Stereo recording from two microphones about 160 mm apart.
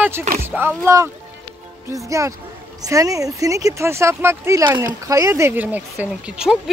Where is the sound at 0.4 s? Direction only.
15° right (ahead or behind).